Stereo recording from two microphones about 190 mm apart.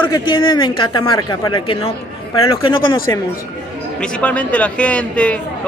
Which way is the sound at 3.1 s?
20° left (ahead or behind).